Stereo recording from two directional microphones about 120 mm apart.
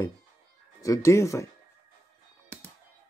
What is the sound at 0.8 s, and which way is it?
Speech, 25° left (ahead or behind).